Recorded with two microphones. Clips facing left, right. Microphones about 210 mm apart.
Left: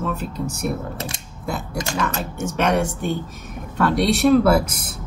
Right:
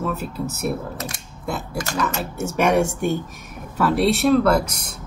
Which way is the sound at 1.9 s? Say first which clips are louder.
Right 1 dB; 5° right (ahead or behind).